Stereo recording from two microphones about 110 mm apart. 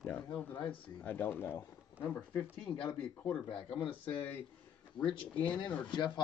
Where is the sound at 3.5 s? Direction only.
50° left (ahead or behind).